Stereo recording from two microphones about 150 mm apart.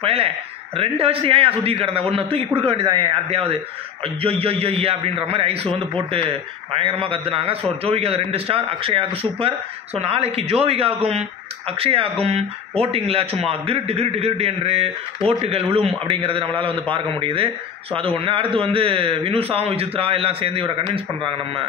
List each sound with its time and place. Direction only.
0.0 s a man's voice: 40° right (ahead or behind)
6.8 s a man's voice: 35° right (ahead or behind)